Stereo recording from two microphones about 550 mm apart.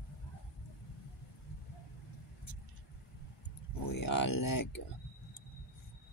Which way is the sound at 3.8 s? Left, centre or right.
Left.